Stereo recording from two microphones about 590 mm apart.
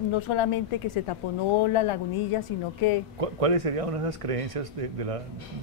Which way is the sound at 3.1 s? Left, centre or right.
Right.